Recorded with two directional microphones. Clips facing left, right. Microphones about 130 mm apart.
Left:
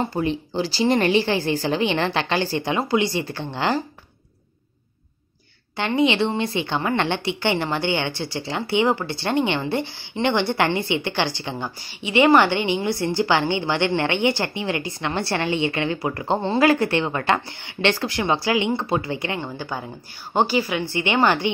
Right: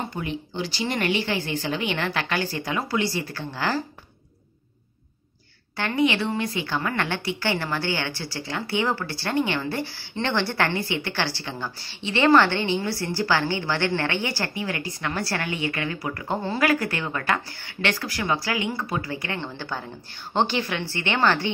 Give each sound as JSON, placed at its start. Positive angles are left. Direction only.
{"t": 0.0, "sound": "a woman's voice", "side_deg": 30}
{"t": 5.8, "sound": "a woman's voice", "side_deg": 20}